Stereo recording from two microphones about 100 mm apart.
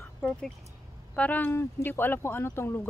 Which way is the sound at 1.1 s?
15° left (ahead or behind).